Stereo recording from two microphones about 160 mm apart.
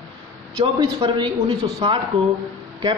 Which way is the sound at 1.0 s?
30° right (ahead or behind).